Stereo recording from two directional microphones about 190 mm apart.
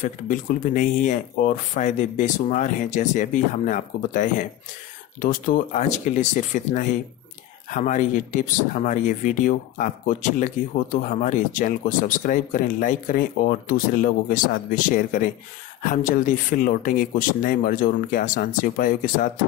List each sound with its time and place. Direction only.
0.0 s speech: 40° left (ahead or behind)